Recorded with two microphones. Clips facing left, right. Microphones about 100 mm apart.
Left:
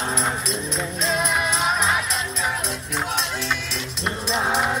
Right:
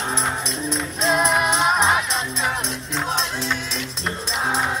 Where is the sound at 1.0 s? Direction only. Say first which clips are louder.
Right 5 dB; 35° right (ahead or behind).